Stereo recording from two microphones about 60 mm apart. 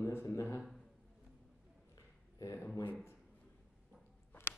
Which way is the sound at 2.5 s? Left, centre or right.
Left.